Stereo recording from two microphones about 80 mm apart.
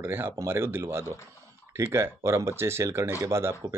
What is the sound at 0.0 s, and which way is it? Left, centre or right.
Speech, right.